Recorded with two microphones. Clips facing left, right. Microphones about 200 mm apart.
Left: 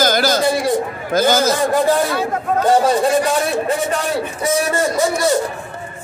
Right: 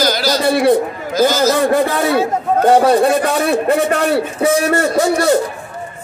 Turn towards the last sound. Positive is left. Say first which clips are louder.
# right 3 dB
turn(degrees=-65)  # may be behind; listen again after turning